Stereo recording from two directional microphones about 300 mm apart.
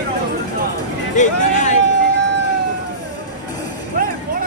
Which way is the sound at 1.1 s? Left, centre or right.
Left.